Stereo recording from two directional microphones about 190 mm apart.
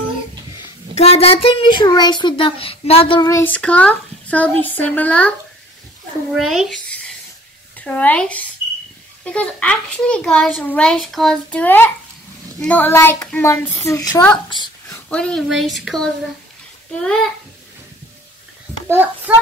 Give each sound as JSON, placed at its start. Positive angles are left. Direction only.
{"t": 0.9, "sound": "a child's voice", "side_deg": 35}
{"t": 6.3, "sound": "a sound", "side_deg": 0}
{"t": 7.7, "sound": "a child's voice", "side_deg": 10}
{"t": 14.9, "sound": "speech", "side_deg": 5}
{"t": 18.9, "sound": "a child's voice", "side_deg": -10}